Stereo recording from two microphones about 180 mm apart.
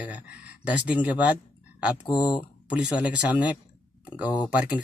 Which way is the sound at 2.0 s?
25° left (ahead or behind).